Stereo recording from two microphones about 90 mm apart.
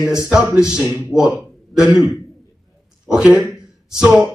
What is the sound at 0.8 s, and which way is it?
Speech, 20° right (ahead or behind).